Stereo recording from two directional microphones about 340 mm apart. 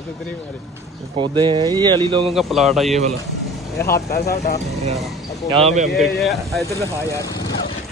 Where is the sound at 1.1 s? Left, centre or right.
Centre.